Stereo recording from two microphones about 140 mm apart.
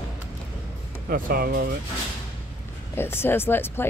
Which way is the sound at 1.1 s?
90° right.